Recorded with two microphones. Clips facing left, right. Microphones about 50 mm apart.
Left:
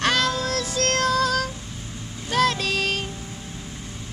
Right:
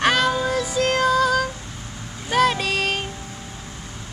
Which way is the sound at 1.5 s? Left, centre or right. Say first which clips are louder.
Right 1 dB; right.